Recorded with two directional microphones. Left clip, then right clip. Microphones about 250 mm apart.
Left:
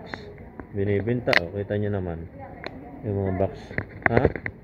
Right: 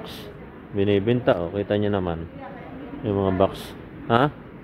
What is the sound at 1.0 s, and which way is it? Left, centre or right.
Speech, right.